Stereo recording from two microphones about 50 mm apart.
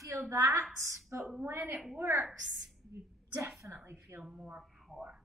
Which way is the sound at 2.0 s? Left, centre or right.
Right.